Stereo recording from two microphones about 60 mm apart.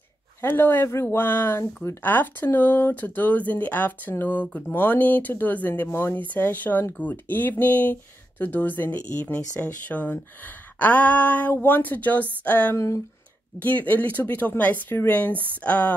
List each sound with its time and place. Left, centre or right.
0.4 s speech: left
10.4 s a sound: left
11.5 s speech: left
12.7 s speech: left
13.6 s speech: left